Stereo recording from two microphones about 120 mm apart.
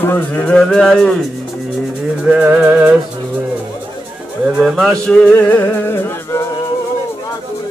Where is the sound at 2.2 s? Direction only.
10° right (ahead or behind).